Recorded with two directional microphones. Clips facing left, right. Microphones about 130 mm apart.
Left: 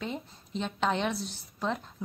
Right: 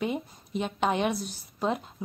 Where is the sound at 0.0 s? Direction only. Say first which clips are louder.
Right 6 dB; 10° right (ahead or behind).